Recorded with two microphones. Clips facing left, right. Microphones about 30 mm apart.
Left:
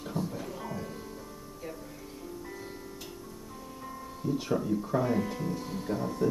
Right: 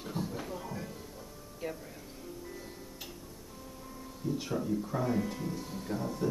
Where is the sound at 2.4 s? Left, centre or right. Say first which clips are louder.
Left 3 dB; centre.